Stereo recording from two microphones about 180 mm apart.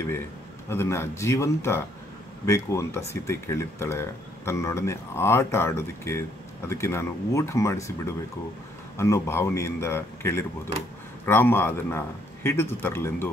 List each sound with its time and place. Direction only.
0.7 s speech: 15° left (ahead or behind)